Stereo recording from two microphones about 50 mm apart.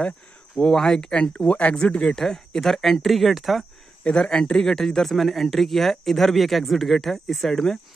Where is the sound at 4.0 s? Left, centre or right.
Centre.